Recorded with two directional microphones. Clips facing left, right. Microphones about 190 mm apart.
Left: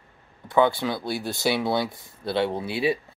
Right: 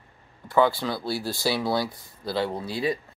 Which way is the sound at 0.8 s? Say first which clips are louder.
Left 1 dB; 20° left (ahead or behind).